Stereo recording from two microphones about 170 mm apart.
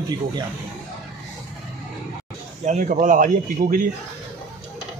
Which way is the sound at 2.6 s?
45° right (ahead or behind).